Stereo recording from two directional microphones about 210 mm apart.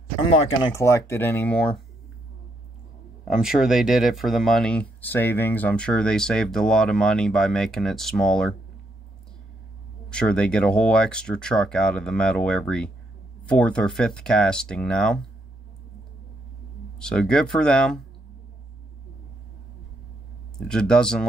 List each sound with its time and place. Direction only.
0.3 s speech: 15° left (ahead or behind)
3.3 s speech: centre (ahead or behind)
10.0 s speech: 5° left (ahead or behind)
17.0 s speech: 5° left (ahead or behind)
20.5 s speech: 5° left (ahead or behind)